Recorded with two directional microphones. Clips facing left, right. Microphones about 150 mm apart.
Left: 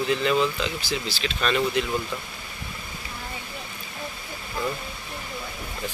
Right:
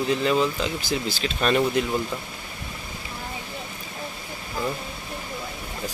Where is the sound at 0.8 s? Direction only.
50° right (ahead or behind).